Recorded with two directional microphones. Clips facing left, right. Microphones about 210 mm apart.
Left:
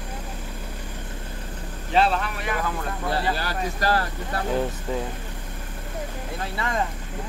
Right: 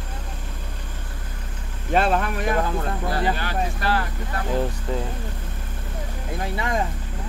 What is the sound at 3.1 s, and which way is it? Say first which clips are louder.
Speech: left 1 dB; 35° left (ahead or behind).